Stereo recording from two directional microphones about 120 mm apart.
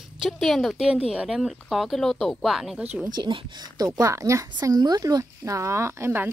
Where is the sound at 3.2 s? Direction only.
35° right (ahead or behind).